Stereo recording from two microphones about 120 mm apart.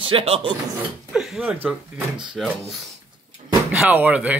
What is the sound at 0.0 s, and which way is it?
Speech, 50° right (ahead or behind).